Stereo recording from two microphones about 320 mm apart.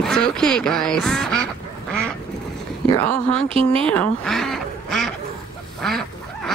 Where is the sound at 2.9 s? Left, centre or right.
Centre.